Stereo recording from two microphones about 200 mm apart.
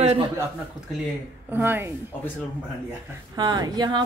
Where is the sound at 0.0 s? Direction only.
30° right (ahead or behind).